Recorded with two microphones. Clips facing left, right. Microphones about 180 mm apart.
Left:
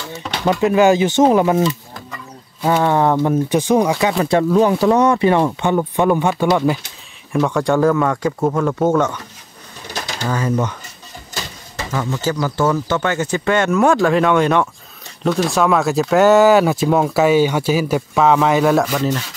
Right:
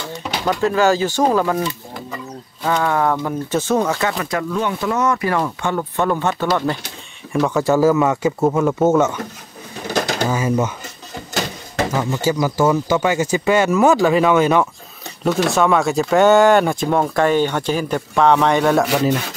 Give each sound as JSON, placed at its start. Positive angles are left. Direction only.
{"t": 0.5, "sound": "speech", "side_deg": 15}
{"t": 2.8, "sound": "speech", "side_deg": 25}
{"t": 4.2, "sound": "speech", "side_deg": 30}
{"t": 7.3, "sound": "speech", "side_deg": 0}
{"t": 9.9, "sound": "pigeon", "side_deg": -60}
{"t": 10.3, "sound": "speech", "side_deg": -10}
{"t": 11.9, "sound": "speech", "side_deg": -10}